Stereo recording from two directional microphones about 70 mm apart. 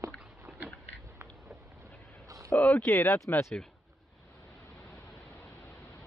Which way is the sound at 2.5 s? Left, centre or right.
Left.